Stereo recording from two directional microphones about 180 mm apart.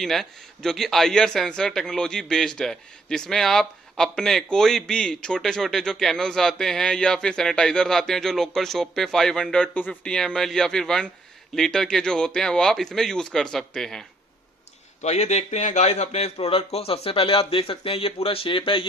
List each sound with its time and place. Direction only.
0.0 s a man's voice: centre (ahead or behind)
15.0 s a man's voice: 35° left (ahead or behind)